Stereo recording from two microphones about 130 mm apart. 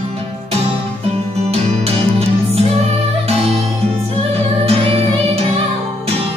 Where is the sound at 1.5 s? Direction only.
50° right (ahead or behind).